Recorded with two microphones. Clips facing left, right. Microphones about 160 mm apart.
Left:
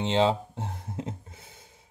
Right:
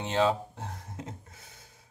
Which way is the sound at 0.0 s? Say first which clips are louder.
Left 3 dB; 25° left (ahead or behind).